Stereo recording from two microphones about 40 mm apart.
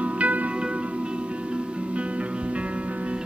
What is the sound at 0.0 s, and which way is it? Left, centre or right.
Music, right.